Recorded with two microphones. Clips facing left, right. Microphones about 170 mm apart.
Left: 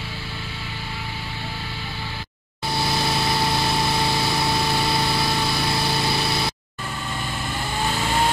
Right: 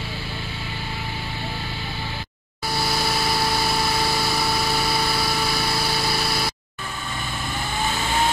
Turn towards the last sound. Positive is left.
turn(degrees=20)  # may be behind; listen again after turning